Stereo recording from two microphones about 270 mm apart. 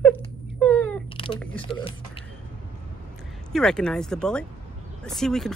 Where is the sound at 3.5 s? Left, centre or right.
Centre.